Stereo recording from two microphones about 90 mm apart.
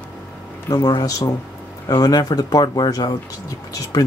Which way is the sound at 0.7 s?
50° left (ahead or behind).